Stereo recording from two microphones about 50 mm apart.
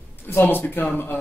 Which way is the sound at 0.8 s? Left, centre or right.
Left.